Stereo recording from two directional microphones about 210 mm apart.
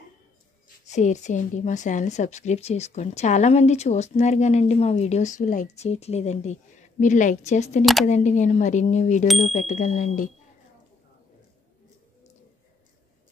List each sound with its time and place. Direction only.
0.8 s a woman's voice: 35° left (ahead or behind)
7.8 s speech: centre (ahead or behind)
8.1 s a woman's voice: 35° left (ahead or behind)
9.3 s speech: centre (ahead or behind)
9.6 s a woman's voice: 35° left (ahead or behind)